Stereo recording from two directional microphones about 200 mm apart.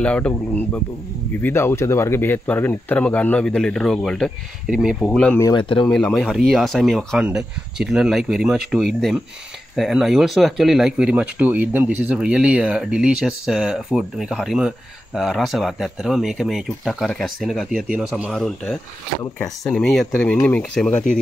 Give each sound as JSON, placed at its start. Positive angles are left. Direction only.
{"t": 0.0, "sound": "speech", "side_deg": 5}
{"t": 5.4, "sound": "speech", "side_deg": 20}
{"t": 5.9, "sound": "speech", "side_deg": 5}